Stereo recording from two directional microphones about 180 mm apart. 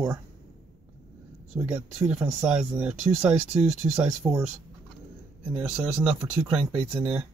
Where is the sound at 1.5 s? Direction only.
5° right (ahead or behind).